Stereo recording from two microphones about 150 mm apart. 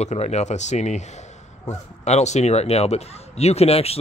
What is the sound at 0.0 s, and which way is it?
Speech, 45° left (ahead or behind).